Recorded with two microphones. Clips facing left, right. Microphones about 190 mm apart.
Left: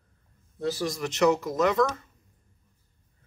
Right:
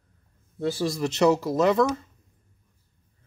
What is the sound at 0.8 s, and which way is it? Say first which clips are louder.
Speech: right 3 dB; 25° right (ahead or behind).